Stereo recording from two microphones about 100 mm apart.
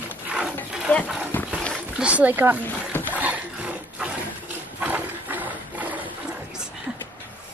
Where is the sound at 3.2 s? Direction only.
15° right (ahead or behind).